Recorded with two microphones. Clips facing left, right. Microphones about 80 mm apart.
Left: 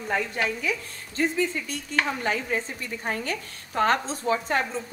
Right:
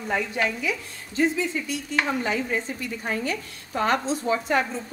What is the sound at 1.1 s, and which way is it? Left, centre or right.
A woman's voice, left.